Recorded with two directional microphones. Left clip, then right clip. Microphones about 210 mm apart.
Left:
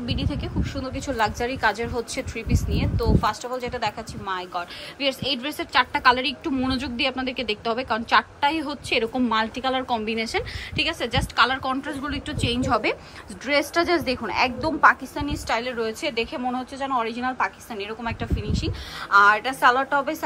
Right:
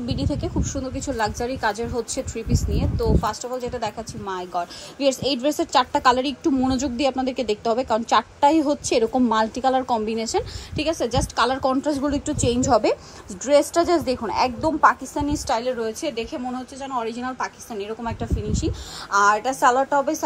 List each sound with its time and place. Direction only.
0.0 s a woman's voice: 20° right (ahead or behind)